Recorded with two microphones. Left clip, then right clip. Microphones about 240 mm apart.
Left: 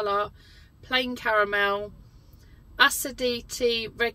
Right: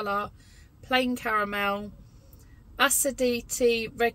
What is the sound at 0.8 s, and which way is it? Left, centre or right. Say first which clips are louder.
Speech: even; centre.